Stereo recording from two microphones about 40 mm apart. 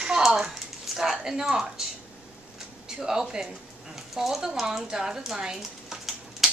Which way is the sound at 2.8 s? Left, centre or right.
Centre.